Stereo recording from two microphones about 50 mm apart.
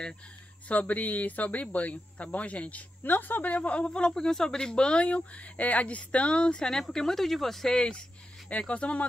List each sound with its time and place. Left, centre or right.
0.7 s speech: left
3.0 s speech: left
3.5 s speech: left
8.5 s speech: left